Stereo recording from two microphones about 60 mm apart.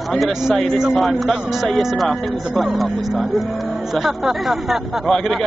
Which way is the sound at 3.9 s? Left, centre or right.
Centre.